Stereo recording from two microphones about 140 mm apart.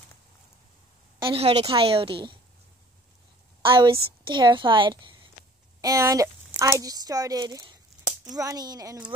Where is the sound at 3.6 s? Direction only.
35° right (ahead or behind).